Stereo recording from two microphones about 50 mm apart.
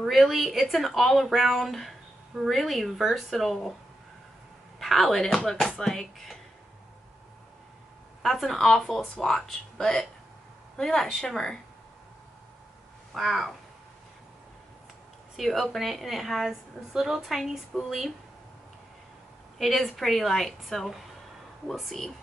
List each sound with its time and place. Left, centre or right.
0.1 s speech: centre
4.7 s speech: centre
8.2 s speech: centre
13.1 s speech: centre
15.3 s speech: centre
19.6 s speech: centre